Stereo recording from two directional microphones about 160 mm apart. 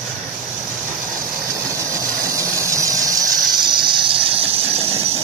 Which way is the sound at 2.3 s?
20° right (ahead or behind).